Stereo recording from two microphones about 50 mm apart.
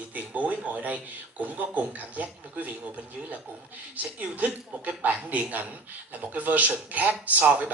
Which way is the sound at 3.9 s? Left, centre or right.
Right.